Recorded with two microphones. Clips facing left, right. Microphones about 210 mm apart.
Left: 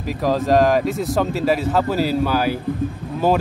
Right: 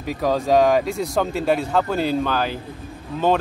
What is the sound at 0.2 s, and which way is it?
Speech, centre (ahead or behind).